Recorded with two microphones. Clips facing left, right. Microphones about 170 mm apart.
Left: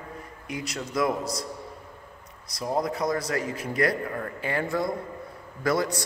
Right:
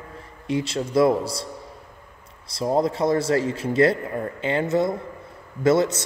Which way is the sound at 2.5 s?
30° right (ahead or behind).